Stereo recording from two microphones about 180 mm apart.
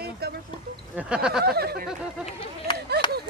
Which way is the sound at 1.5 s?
60° right (ahead or behind).